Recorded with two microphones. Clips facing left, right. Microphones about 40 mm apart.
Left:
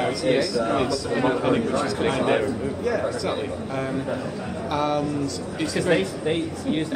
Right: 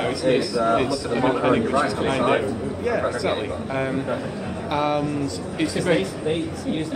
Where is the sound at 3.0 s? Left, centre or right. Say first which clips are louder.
Right 2 dB; right.